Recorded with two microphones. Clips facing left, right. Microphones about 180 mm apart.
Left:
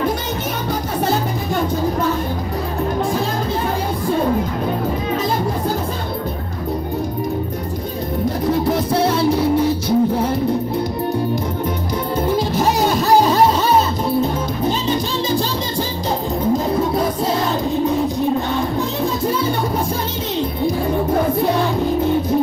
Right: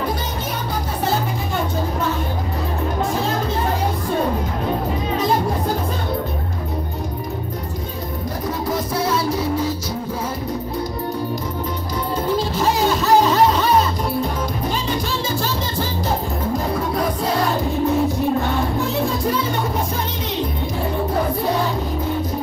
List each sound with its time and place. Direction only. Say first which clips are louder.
8.5 s music: left 5 dB; 65° left (ahead or behind)
12.4 s music: left 2 dB; 15° left (ahead or behind)
13.3 s music: left 1 dB; 30° left (ahead or behind)